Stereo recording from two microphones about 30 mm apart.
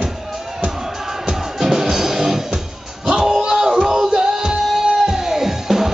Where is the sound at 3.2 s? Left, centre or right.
Centre.